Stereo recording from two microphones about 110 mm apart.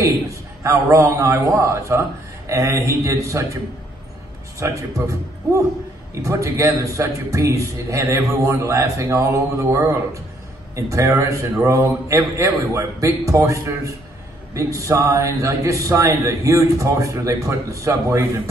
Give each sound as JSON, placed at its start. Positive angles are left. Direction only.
{"t": 0.7, "sound": "a man's voice", "side_deg": -25}
{"t": 4.6, "sound": "a man's voice", "side_deg": -30}
{"t": 6.2, "sound": "a man's voice", "side_deg": -25}